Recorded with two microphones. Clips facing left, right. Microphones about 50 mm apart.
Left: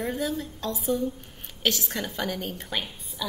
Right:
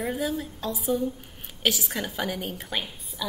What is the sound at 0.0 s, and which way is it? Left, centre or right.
A woman's voice, centre.